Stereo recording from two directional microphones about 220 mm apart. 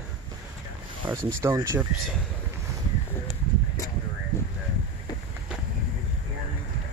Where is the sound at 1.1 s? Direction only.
5° right (ahead or behind).